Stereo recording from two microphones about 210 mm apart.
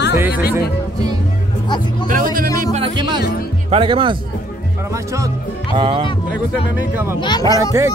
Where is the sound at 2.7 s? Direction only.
25° right (ahead or behind).